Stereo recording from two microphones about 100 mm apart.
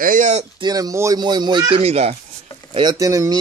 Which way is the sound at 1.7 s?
90° right.